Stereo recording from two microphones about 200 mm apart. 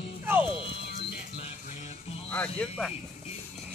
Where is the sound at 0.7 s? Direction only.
60° left (ahead or behind).